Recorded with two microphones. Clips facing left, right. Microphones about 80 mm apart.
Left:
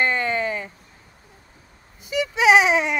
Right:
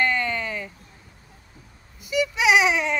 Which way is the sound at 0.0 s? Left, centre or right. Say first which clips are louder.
Left 2 dB; left.